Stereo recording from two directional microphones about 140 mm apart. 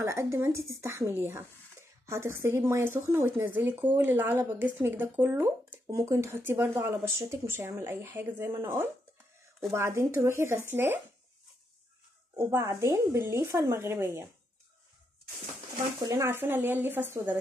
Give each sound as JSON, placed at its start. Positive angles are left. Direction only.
{"t": 0.0, "sound": "speech", "side_deg": -20}
{"t": 9.7, "sound": "a woman's voice", "side_deg": -20}
{"t": 12.4, "sound": "a woman's voice", "side_deg": -20}
{"t": 16.1, "sound": "speech", "side_deg": -20}